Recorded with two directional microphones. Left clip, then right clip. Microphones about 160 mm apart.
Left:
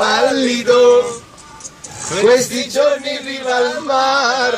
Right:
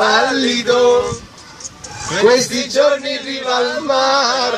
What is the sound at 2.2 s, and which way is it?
Music, 20° right (ahead or behind).